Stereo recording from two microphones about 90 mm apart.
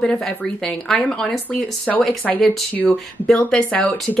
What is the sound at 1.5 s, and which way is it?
Speech, 15° left (ahead or behind).